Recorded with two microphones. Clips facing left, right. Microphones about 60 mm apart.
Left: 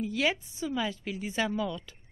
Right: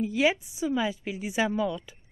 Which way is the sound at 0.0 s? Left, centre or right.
Centre.